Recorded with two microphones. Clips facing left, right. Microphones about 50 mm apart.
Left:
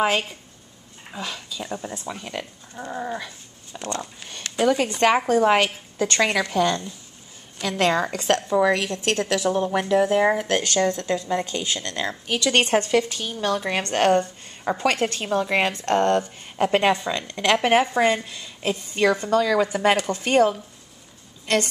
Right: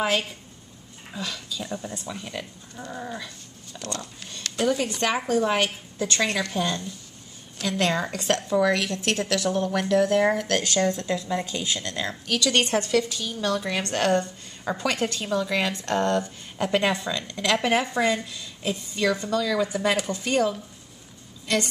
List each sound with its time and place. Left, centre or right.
1.1 s speech: left
3.3 s a sound: left
4.6 s a woman's voice: left
7.6 s a woman's voice: left
8.4 s speech: left
11.0 s a woman's voice: left
12.3 s speech: left
17.3 s a woman's voice: left
17.6 s a woman's voice: left